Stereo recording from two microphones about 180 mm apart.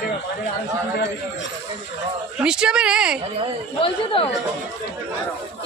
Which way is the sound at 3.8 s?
30° left (ahead or behind).